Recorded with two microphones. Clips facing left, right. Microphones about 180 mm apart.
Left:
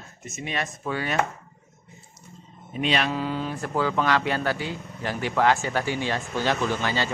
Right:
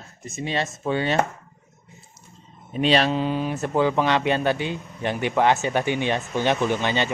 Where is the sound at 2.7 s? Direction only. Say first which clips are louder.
Right 5 dB; 35° right (ahead or behind).